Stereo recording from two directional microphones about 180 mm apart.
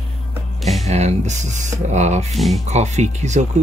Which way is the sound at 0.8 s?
35° right (ahead or behind).